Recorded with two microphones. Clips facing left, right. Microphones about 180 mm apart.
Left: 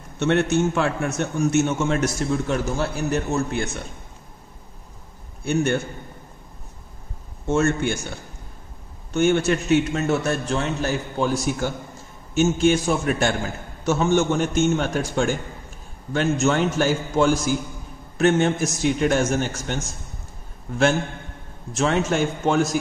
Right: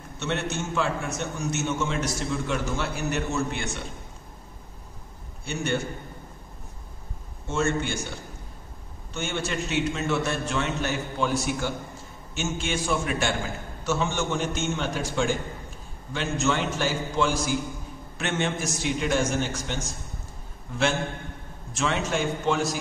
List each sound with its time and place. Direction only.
0.2 s a man's voice: 55° left (ahead or behind); by 3.6 s 40° left (ahead or behind)
5.4 s a man's voice: 50° left (ahead or behind)
7.4 s a man's voice: 50° left (ahead or behind)
9.1 s a man's voice: 50° left (ahead or behind)
21.7 s a man's voice: 45° left (ahead or behind)